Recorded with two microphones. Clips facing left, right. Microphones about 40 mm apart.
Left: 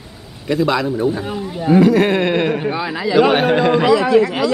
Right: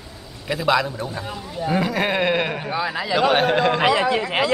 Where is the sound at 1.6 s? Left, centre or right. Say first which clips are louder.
Left 9 dB; centre.